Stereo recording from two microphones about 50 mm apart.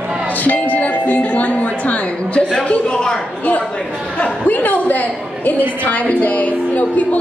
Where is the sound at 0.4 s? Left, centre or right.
Left.